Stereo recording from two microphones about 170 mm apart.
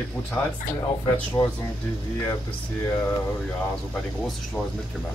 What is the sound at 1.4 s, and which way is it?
Speech, 15° left (ahead or behind).